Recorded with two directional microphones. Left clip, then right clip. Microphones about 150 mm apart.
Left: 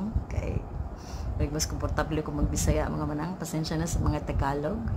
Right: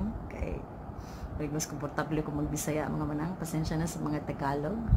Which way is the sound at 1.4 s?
10° left (ahead or behind).